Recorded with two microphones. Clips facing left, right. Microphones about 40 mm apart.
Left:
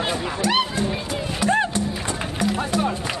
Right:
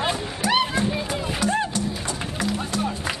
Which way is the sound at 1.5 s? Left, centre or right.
Left.